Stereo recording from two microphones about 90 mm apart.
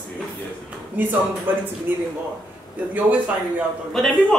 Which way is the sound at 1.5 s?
20° right (ahead or behind).